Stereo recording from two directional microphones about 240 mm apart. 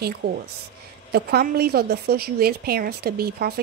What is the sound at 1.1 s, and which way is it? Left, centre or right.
A woman's voice, right.